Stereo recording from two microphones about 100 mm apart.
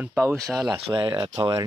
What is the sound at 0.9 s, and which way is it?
Speech, 40° right (ahead or behind).